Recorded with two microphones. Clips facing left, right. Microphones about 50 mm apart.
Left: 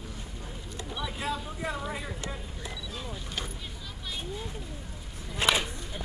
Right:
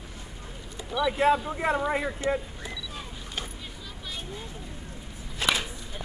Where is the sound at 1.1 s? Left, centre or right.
Right.